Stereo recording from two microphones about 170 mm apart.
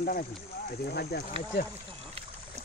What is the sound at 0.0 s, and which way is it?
Speech, 55° left (ahead or behind).